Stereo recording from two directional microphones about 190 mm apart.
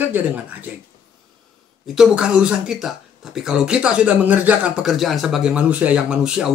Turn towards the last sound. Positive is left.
turn(degrees=-5)  # may be behind; listen again after turning